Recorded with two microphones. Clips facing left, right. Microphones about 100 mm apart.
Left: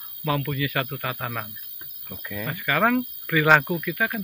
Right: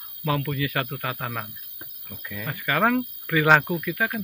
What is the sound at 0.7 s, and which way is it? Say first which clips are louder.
Speech: even; centre (ahead or behind).